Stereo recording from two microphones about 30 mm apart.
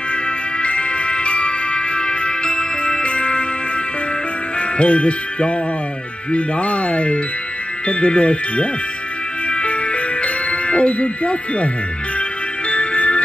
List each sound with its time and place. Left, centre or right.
0.6 s music: left
4.6 s jingle bell: left
6.3 s speech: left
9.5 s music: left
10.2 s speech: left
12.6 s music: left